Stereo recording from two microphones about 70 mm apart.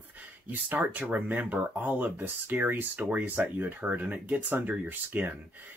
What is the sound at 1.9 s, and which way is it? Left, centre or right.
Speech, right.